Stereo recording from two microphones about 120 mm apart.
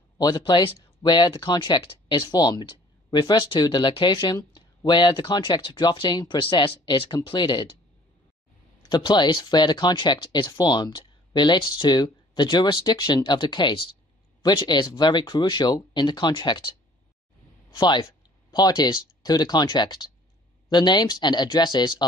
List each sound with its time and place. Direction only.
0.2 s speech: 35° left (ahead or behind)
8.8 s speech: 40° left (ahead or behind)
17.7 s speech: 40° left (ahead or behind)